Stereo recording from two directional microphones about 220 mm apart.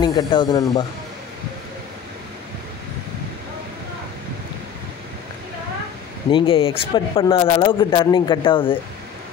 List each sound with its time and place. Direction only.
0.0 s speech: 20° left (ahead or behind)
6.3 s speech: 25° left (ahead or behind)